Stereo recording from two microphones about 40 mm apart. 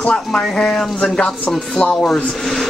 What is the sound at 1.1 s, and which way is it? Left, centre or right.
Speech, left.